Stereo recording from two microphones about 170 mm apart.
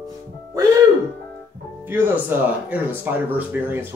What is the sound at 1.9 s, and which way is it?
Speech, 10° right (ahead or behind).